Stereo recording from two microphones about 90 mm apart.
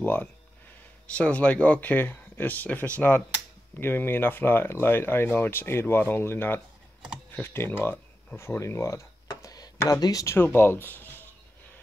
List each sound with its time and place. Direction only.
0.0 s speech: 20° left (ahead or behind)
9.3 s a sound: 45° left (ahead or behind)
10.3 s speech: 25° left (ahead or behind)